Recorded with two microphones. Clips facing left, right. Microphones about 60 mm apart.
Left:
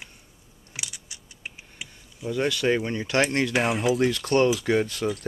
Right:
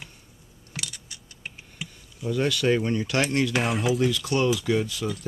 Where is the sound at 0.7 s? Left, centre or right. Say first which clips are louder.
Right 2 dB; centre; by 3.5 s left.